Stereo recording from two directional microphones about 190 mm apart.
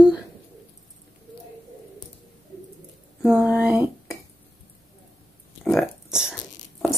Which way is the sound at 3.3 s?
5° right (ahead or behind).